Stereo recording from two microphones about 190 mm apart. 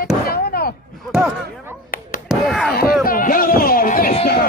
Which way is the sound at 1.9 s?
50° left (ahead or behind).